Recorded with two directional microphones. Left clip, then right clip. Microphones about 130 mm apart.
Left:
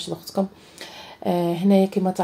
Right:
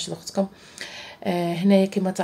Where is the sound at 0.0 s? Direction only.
20° left (ahead or behind).